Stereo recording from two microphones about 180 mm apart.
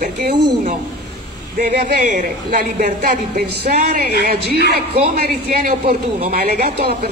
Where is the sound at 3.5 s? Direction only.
65° right (ahead or behind).